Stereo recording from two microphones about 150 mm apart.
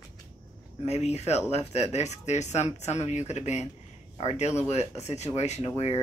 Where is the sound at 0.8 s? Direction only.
45° left (ahead or behind).